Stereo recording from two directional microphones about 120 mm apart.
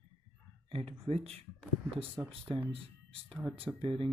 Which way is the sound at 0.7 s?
50° right (ahead or behind).